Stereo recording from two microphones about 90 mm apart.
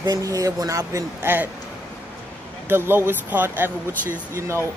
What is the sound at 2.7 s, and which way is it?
A man's voice, 25° right (ahead or behind).